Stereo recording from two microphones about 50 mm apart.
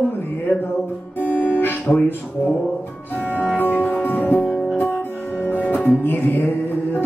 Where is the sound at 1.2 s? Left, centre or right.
Left.